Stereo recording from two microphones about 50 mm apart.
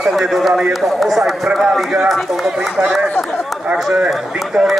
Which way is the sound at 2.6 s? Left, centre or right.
Right.